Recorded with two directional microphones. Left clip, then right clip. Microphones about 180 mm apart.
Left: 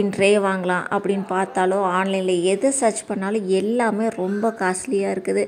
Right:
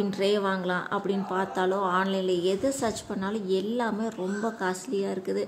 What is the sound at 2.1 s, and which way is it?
Speech, 60° left (ahead or behind).